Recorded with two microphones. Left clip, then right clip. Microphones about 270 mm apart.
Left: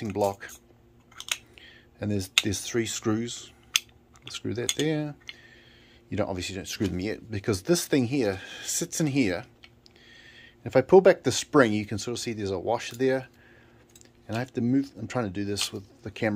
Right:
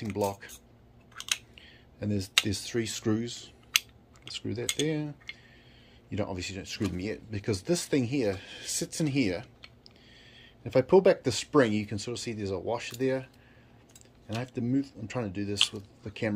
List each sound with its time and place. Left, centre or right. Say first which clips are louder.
0.0 s speech: left 4 dB; centre
1.5 s computer keyboard: left 3 dB; centre
2.4 s speech: left 3 dB; centre